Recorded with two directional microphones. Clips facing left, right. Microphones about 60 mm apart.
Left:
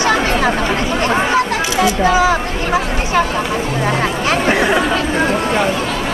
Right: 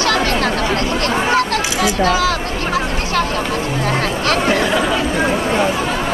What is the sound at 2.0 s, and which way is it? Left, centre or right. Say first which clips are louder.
Speech: left 3 dB; centre.